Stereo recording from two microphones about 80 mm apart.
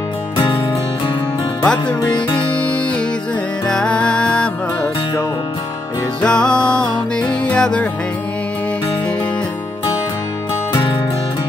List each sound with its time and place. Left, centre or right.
2.1 s music: left
3.6 s music: centre
6.2 s music: centre